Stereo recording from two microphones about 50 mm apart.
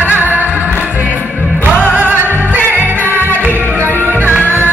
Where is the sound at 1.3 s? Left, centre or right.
Right.